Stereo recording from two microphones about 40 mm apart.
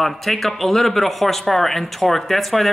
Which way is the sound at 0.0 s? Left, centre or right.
Centre.